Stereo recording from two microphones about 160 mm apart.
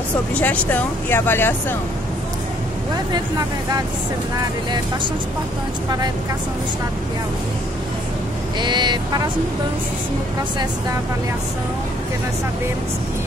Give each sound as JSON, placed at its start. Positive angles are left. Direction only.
{"t": 0.3, "sound": "speech", "side_deg": 10}
{"t": 8.5, "sound": "speech", "side_deg": -30}